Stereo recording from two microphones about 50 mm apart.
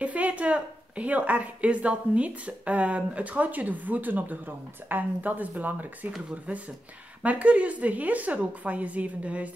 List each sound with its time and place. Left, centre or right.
0.0 s a woman's voice: right
7.2 s a woman's voice: right